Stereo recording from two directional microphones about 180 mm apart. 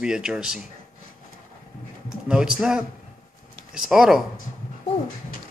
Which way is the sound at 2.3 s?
5° right (ahead or behind).